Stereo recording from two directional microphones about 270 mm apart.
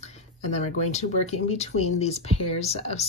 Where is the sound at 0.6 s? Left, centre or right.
Left.